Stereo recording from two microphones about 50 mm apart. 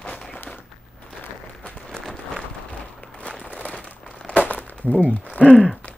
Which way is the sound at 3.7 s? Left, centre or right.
Centre.